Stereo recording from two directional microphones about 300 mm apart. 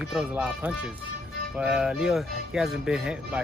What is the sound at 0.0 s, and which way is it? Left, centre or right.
Speech, centre.